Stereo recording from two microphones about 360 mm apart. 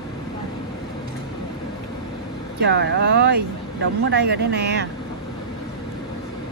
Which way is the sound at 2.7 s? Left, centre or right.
Right.